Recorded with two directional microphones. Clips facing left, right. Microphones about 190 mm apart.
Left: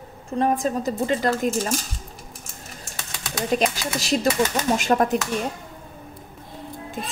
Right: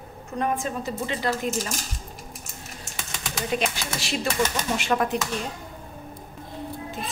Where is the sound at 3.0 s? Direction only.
Centre (ahead or behind).